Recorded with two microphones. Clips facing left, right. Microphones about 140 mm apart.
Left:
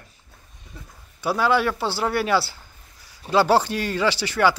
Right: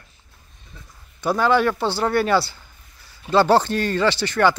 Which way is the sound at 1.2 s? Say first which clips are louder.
Right 2 dB; 5° left (ahead or behind).